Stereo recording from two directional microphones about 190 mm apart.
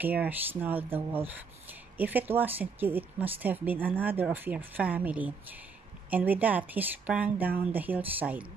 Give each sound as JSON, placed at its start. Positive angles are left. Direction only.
{"t": 0.0, "sound": "speech", "side_deg": -10}